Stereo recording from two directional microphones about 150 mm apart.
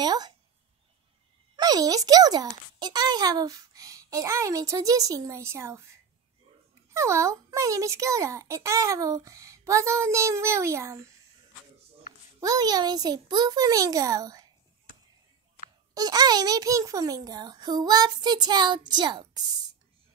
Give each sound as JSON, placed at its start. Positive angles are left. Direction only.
{"t": 0.0, "sound": "speech", "side_deg": -25}
{"t": 1.6, "sound": "speech", "side_deg": -25}
{"t": 6.9, "sound": "speech", "side_deg": -20}
{"t": 12.4, "sound": "speech", "side_deg": -25}
{"t": 15.9, "sound": "speech", "side_deg": -25}